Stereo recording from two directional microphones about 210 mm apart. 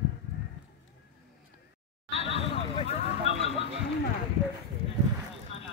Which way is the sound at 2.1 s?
30° left (ahead or behind).